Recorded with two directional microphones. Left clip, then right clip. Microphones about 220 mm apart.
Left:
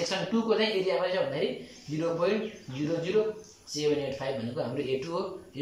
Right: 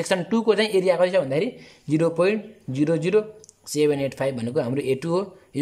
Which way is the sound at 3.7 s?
45° right (ahead or behind).